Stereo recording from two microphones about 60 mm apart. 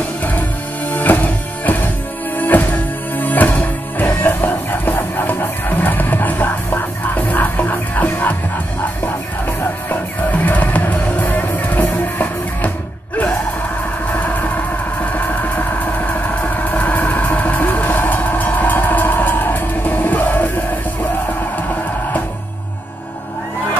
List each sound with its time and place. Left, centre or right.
0.2 s music: left
9.6 s music: left
14.1 s vehicle: left